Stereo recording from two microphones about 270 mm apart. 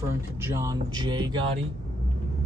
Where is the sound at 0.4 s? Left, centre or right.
Centre.